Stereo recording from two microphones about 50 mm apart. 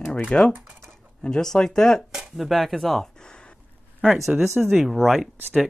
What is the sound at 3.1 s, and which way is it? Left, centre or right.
Gasp, centre.